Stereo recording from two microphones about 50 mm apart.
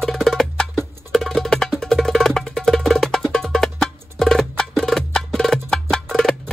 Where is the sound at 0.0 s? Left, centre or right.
Centre.